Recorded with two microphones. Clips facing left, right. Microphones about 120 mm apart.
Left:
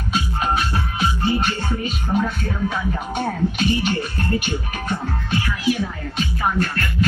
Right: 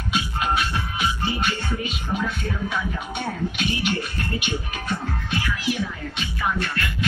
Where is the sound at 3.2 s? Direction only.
40° left (ahead or behind).